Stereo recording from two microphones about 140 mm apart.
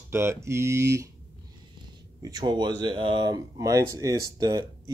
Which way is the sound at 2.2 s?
30° right (ahead or behind).